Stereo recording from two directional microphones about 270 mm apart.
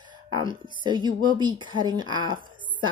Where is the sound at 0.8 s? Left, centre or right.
Centre.